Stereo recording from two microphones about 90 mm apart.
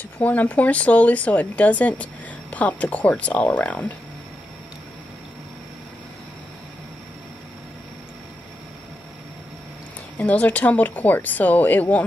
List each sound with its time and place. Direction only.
0.2 s speech: 20° left (ahead or behind)
10.1 s speech: 15° left (ahead or behind)